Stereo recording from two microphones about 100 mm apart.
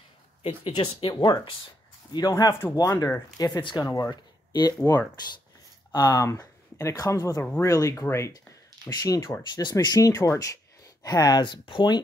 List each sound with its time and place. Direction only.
0.4 s speech: 60° left (ahead or behind); by 3.8 s 45° left (ahead or behind)
3.8 s speech: 35° left (ahead or behind)
4.1 s a sound: 45° left (ahead or behind)
5.9 s speech: 40° left (ahead or behind)